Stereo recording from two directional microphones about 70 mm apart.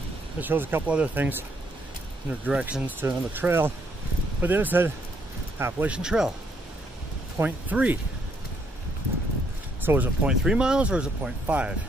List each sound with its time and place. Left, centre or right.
0.4 s speech: right
0.8 s speech: centre
2.4 s speech: centre
3.0 s speech: right
5.9 s speech: centre
7.4 s speech: right
9.8 s speech: right
10.2 s speech: centre